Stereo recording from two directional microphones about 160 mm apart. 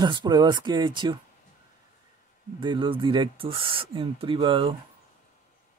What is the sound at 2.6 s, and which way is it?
Speech, 30° right (ahead or behind).